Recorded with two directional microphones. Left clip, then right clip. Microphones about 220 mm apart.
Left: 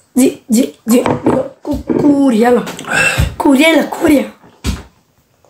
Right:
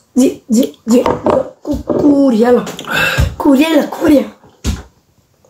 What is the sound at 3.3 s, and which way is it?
Speech, 25° left (ahead or behind).